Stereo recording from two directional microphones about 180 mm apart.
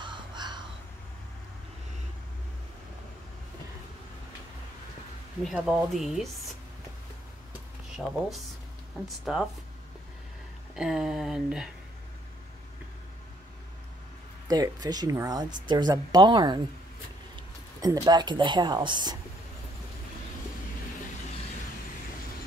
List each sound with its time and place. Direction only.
0.0 s crow: 25° right (ahead or behind)
5.4 s speech: centre (ahead or behind)
8.0 s speech: centre (ahead or behind)
10.7 s speech: 5° right (ahead or behind)
14.5 s speech: 20° right (ahead or behind)
17.8 s speech: 20° right (ahead or behind)